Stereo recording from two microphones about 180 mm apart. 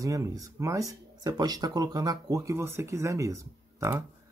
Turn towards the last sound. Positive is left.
turn(degrees=-15)  # may be behind; listen again after turning